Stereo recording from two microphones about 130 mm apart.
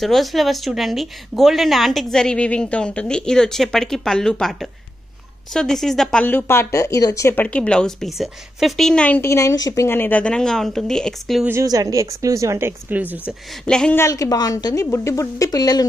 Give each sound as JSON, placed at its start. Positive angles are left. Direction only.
{"t": 0.0, "sound": "speech", "side_deg": 0}
{"t": 6.2, "sound": "a woman's voice", "side_deg": 15}
{"t": 7.4, "sound": "a woman's voice", "side_deg": 10}
{"t": 9.8, "sound": "speech", "side_deg": 15}
{"t": 11.6, "sound": "speech", "side_deg": -30}
{"t": 13.7, "sound": "speech", "side_deg": 5}
{"t": 13.9, "sound": "a woman's voice", "side_deg": 25}